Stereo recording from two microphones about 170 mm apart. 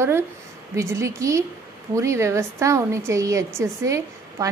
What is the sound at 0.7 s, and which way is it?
A woman's voice, 15° right (ahead or behind).